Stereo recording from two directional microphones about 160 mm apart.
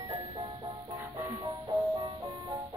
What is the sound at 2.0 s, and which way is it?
Music, 30° right (ahead or behind).